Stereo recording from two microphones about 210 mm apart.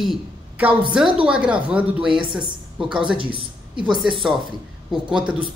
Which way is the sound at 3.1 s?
25° right (ahead or behind).